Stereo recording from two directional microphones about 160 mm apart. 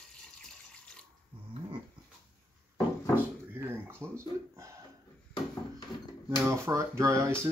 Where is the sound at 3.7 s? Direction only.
15° right (ahead or behind).